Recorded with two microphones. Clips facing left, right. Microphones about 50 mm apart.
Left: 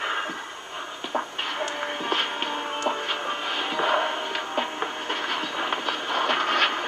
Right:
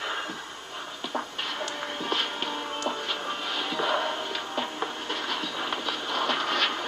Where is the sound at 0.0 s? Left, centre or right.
Left.